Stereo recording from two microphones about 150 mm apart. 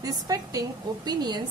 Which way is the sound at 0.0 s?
25° right (ahead or behind).